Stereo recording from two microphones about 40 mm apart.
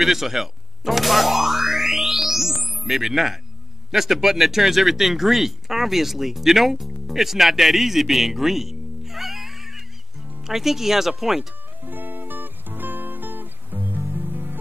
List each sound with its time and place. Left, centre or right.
0.0 s speech: centre
11.8 s music: right